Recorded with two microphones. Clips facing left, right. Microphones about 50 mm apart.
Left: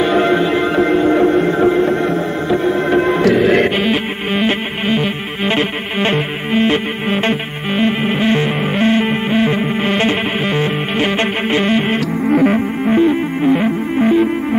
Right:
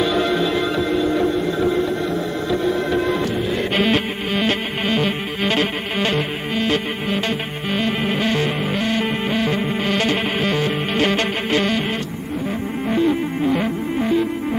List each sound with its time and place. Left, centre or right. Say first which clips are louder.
0.0 s music: left 5 dB; left
3.3 s music: left 10 dB; left
3.7 s music: left 2 dB; centre; by 12.0 s left
12.3 s music: left 15 dB; left
12.8 s music: left 4 dB; left